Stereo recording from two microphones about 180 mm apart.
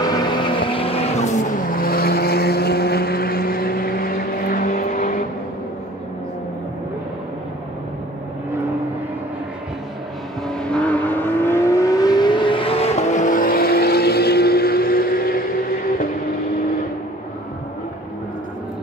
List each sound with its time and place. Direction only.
0.0 s vehicle: 25° left (ahead or behind); by 5.2 s 50° left (ahead or behind)
10.5 s vehicle: 5° left (ahead or behind); by 15.4 s 55° left (ahead or behind)